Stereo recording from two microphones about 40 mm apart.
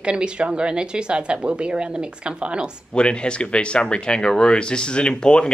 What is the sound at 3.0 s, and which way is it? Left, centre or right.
Speech, left.